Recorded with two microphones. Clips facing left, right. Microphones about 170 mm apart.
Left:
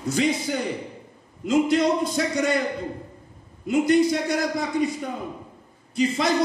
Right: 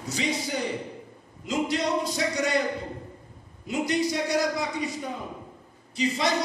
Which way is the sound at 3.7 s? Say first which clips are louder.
Left 7 dB; 50° left (ahead or behind).